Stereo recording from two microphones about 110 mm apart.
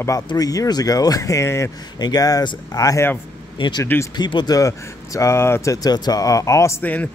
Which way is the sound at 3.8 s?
20° left (ahead or behind).